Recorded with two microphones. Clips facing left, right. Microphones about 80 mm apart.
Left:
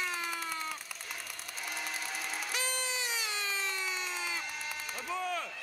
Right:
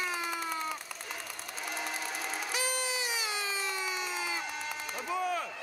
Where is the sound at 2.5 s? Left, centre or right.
Centre.